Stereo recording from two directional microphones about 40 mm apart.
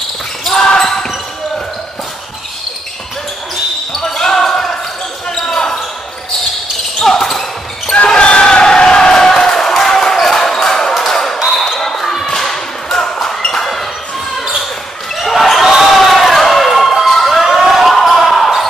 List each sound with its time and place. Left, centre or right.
0.5 s basketball bounce: centre
4.0 s basketball bounce: centre
7.0 s basketball bounce: centre
8.1 s a sound: left
11.5 s basketball bounce: centre
13.6 s a sound: centre
15.1 s basketball bounce: centre
17.1 s a sound: centre
17.9 s basketball bounce: centre